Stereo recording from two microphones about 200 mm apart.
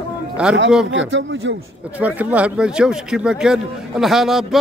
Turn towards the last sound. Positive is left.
turn(degrees=0)  # may be behind; listen again after turning